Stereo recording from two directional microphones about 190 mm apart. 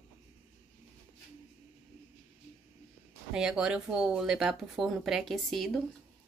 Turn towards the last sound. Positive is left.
turn(degrees=0)  # may be behind; listen again after turning